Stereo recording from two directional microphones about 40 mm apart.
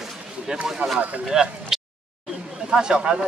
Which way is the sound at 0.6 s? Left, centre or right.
Centre.